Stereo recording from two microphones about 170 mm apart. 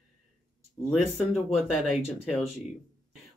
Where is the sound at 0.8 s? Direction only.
Centre (ahead or behind).